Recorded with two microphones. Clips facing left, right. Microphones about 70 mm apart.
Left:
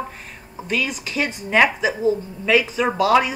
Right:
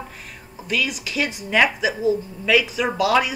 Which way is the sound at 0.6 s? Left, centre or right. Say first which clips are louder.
Even; left.